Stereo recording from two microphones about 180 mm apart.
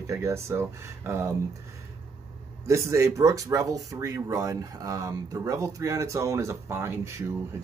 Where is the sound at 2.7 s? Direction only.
15° right (ahead or behind).